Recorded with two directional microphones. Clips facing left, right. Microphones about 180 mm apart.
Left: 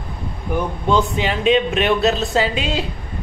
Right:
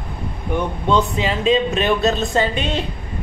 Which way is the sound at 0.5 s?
Centre (ahead or behind).